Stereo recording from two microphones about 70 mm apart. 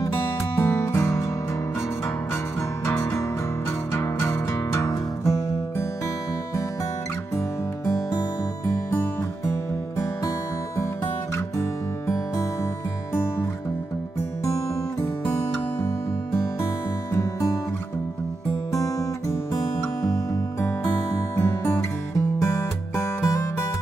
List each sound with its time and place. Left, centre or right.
0.2 s music: left
2.9 s music: left
7.3 s music: left
17.1 s music: left
18.7 s guitar: left
21.4 s music: left